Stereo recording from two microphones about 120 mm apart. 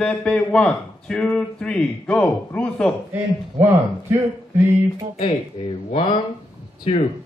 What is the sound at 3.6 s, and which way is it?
A man's voice, 15° right (ahead or behind).